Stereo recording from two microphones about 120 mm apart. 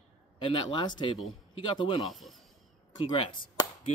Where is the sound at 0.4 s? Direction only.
45° left (ahead or behind).